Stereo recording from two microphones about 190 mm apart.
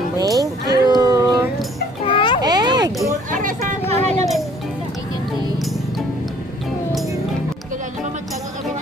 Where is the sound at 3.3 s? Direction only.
45° right (ahead or behind).